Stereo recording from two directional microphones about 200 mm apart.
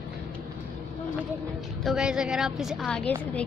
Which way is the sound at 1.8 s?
Centre (ahead or behind).